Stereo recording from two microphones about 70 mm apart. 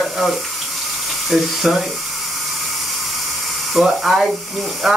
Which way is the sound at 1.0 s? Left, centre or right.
Centre.